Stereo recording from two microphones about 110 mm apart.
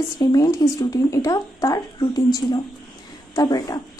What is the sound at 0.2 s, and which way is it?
Speech, 35° left (ahead or behind).